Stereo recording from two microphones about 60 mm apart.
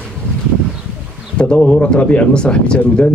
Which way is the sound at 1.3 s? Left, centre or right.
Centre.